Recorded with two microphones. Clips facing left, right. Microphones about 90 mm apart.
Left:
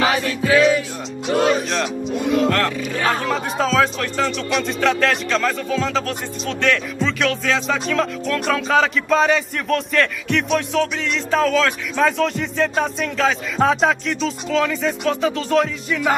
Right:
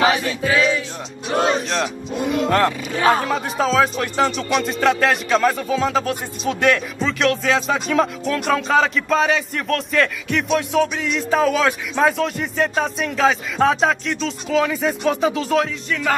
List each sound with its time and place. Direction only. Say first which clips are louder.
0.6 s music: left 5 dB; 50° left (ahead or behind)
1.7 s music: left 1 dB; centre (ahead or behind)
2.5 s music: right 3 dB; 20° right (ahead or behind)
3.1 s speech: right 4 dB; 5° right (ahead or behind)
4.2 s music: right 2 dB; 15° right (ahead or behind)
4.6 s music: right 1 dB; 5° right (ahead or behind)
7.6 s speech: right 2 dB; 15° right (ahead or behind)
15.9 s music: left 1 dB; 10° left (ahead or behind)